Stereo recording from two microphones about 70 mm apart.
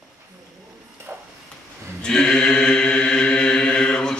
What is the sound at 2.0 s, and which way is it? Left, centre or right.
Chant, centre.